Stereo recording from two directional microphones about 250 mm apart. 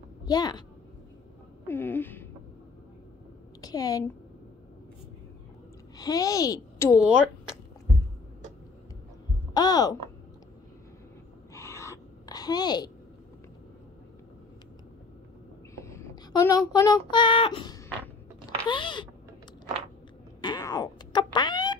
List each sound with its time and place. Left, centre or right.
0.2 s a woman's voice: centre
1.7 s speech: centre
3.6 s a woman's voice: centre
5.9 s a child's voice: centre
9.5 s speech: centre
11.5 s gasp: centre
15.7 s child singing: centre
18.7 s speech: centre
20.4 s a sound: centre